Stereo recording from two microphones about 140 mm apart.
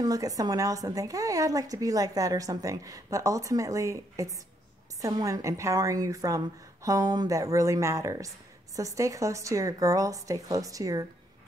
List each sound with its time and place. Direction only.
0.0 s speech: 25° right (ahead or behind)